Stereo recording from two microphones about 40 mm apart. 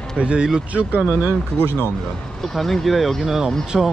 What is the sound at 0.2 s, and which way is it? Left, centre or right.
Speech, right.